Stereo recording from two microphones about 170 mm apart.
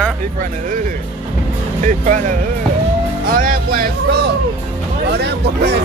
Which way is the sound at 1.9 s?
50° right (ahead or behind).